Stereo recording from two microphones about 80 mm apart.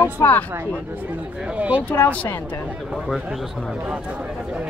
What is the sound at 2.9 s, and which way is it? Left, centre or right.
Speech, centre.